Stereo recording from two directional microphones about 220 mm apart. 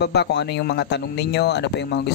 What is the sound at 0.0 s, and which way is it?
Speech, 50° left (ahead or behind).